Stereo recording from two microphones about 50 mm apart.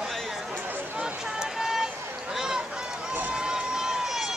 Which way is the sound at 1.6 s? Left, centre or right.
Centre.